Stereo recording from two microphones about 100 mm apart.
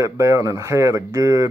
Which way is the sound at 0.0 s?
30° right (ahead or behind).